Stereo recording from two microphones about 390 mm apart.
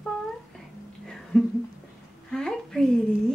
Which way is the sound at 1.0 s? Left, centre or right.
Centre.